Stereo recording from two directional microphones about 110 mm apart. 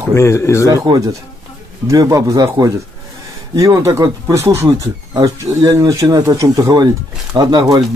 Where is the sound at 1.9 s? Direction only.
30° right (ahead or behind).